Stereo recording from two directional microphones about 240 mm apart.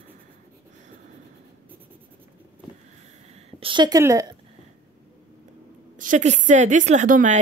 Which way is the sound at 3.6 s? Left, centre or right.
Centre.